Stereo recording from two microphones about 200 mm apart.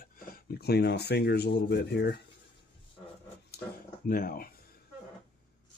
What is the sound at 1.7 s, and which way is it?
Speech, 55° left (ahead or behind).